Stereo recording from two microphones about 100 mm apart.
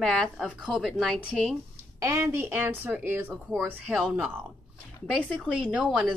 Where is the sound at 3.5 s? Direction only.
5° right (ahead or behind).